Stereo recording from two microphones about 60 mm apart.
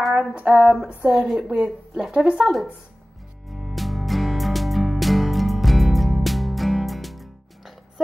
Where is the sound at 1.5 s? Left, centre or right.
Centre.